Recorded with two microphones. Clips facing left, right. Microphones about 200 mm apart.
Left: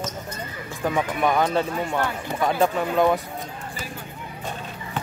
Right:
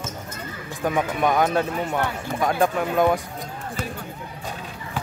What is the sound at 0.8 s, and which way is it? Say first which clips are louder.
Speech: right 1 dB; 5° right (ahead or behind).